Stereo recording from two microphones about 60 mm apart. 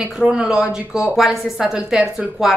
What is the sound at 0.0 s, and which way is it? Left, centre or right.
A woman's voice, centre.